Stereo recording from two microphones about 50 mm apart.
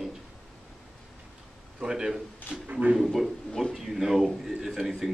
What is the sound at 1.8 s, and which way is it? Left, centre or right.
Speech, centre.